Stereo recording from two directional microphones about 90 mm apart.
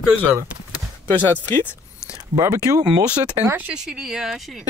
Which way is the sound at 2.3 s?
35° right (ahead or behind).